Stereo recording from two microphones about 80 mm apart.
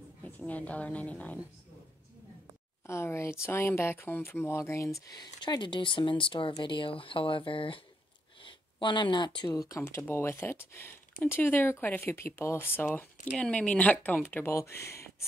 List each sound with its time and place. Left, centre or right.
0.2 s a woman's voice: centre
2.9 s speech: left
5.1 s speech: left
9.8 s speech: left
13.4 s speech: centre; by 15.2 s left